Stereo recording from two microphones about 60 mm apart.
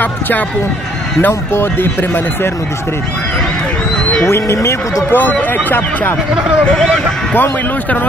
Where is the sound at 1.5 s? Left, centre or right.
Left.